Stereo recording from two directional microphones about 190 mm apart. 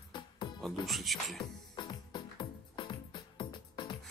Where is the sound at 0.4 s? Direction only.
25° left (ahead or behind).